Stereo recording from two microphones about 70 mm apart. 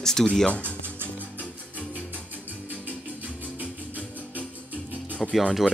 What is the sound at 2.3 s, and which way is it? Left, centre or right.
Music, right.